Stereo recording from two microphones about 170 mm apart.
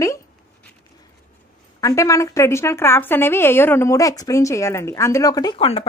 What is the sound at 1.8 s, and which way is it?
A woman's voice, 20° left (ahead or behind).